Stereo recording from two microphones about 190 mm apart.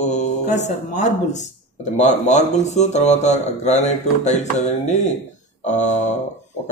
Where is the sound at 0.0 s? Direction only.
40° left (ahead or behind).